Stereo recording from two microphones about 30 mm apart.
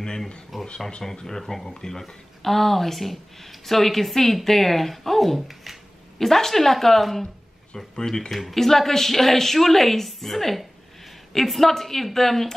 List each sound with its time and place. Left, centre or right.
0.5 s a sound: centre
1.2 s a woman's voice: centre
2.4 s a woman's voice: centre
6.1 s a woman's voice: centre
7.7 s speech: centre
8.3 s a woman's voice: centre